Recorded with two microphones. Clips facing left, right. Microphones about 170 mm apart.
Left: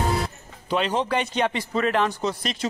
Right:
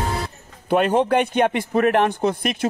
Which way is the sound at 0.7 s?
55° right (ahead or behind).